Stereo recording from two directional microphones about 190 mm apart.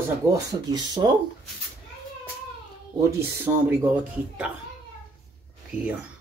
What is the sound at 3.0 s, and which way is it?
Speech, 15° right (ahead or behind).